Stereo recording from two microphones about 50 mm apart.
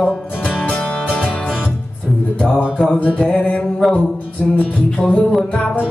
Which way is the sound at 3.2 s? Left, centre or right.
Left.